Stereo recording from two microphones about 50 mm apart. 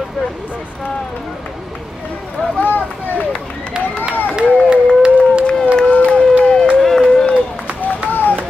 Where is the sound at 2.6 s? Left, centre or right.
Left.